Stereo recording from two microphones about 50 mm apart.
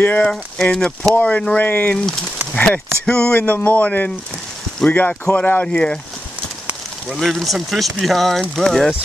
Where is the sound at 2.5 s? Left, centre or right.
Left.